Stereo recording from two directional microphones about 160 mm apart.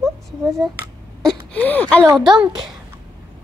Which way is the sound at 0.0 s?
20° right (ahead or behind).